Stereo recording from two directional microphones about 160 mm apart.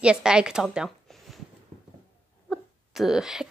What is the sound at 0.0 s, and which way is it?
Speech, 5° right (ahead or behind).